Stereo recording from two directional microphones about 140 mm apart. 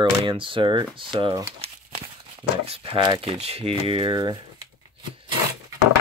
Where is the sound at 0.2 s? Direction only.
35° right (ahead or behind).